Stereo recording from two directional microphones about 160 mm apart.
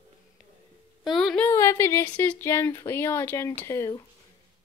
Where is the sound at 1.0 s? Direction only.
Centre (ahead or behind).